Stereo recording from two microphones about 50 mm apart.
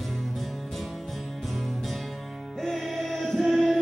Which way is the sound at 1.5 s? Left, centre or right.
Centre.